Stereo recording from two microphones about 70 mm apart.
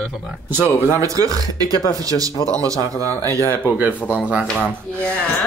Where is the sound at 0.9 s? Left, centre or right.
Right.